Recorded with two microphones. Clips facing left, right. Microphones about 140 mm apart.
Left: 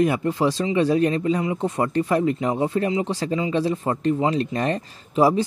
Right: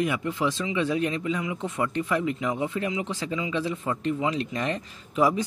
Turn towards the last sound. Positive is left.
turn(degrees=30)  # may be behind; listen again after turning